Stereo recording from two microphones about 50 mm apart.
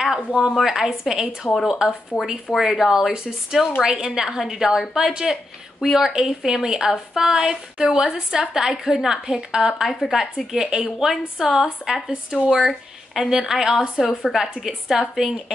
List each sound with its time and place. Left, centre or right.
0.7 s a woman's voice: centre
12.1 s speech: right
12.4 s a woman's voice: centre